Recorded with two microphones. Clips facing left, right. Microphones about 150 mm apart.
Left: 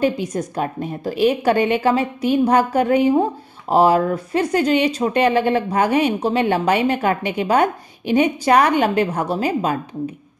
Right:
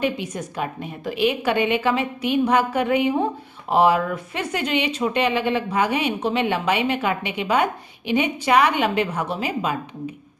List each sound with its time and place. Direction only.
0.0 s speech: 40° left (ahead or behind)